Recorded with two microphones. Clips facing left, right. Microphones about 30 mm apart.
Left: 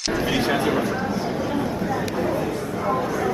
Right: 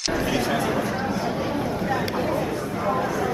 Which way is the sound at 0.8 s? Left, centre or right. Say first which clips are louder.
Left 1 dB; centre.